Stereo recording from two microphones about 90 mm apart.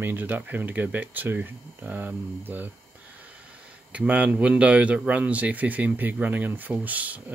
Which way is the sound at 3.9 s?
15° right (ahead or behind).